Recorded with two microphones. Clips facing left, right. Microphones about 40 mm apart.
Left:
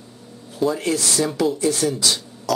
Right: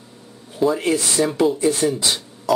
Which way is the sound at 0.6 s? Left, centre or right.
Centre.